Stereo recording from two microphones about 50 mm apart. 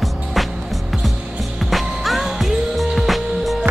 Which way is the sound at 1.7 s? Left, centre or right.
Centre.